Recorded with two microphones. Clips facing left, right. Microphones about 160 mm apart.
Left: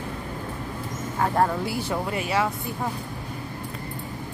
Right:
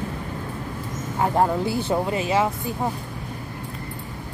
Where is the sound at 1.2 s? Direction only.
15° right (ahead or behind).